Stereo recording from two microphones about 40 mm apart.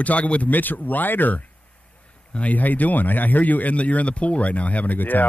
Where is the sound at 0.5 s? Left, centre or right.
Left.